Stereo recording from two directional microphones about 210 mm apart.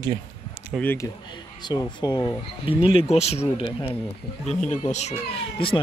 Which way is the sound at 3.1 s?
30° left (ahead or behind).